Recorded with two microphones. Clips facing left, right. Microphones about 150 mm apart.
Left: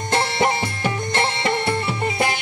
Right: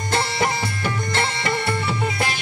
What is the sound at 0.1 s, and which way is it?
Music, 20° left (ahead or behind).